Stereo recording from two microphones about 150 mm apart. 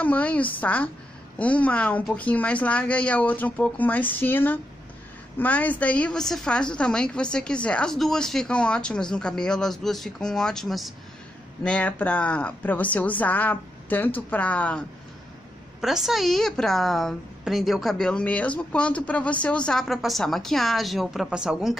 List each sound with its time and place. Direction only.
0.0 s a woman's voice: 10° left (ahead or behind)
15.8 s a woman's voice: centre (ahead or behind)